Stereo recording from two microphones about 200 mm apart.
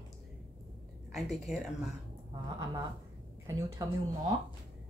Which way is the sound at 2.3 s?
20° right (ahead or behind).